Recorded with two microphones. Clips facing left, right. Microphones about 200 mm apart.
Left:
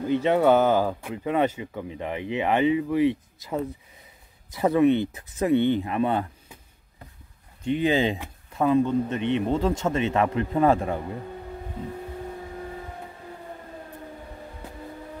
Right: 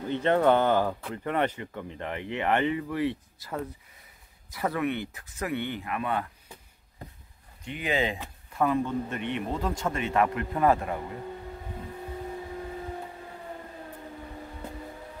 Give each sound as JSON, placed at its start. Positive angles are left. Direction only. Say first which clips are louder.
{"t": 0.1, "sound": "speech", "louder": "left 3 dB", "side_deg": 10}
{"t": 7.6, "sound": "speech", "louder": "left 7 dB", "side_deg": 30}